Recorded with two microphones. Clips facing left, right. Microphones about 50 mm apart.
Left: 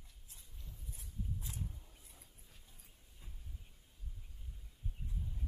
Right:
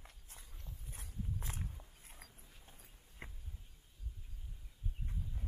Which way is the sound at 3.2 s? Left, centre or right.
Right.